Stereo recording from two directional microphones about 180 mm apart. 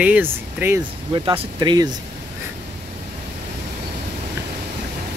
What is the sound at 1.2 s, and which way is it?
Speech, 25° right (ahead or behind).